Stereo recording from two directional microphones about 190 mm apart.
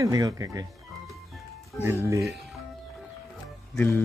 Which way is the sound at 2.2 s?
Centre (ahead or behind).